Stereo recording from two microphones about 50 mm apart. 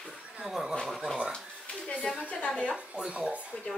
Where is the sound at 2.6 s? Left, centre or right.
Centre.